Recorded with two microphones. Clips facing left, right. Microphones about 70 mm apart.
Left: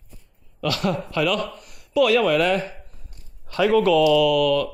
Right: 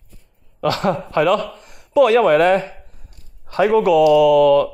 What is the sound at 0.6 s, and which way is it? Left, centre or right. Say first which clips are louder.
A man's voice: right 5 dB; right.